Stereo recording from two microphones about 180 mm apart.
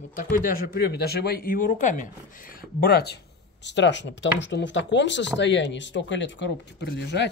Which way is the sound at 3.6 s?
80° left.